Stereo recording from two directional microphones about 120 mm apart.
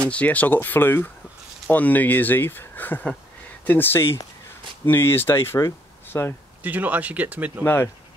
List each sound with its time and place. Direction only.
0.0 s speech: 10° left (ahead or behind)
6.6 s speech: 15° right (ahead or behind)
7.6 s speech: 20° left (ahead or behind)